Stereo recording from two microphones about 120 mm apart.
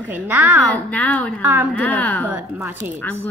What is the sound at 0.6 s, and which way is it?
Speech, 10° left (ahead or behind).